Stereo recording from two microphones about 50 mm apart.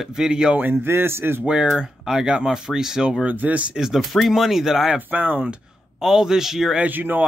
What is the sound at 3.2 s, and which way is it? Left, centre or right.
Speech, right.